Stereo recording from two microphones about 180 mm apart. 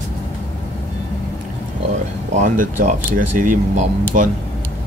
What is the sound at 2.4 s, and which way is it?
Speech, 45° right (ahead or behind).